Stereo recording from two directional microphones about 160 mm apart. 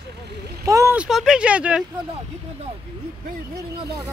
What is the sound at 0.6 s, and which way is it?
Speech, 20° right (ahead or behind).